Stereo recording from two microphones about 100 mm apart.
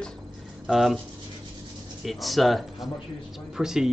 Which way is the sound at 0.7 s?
5° right (ahead or behind).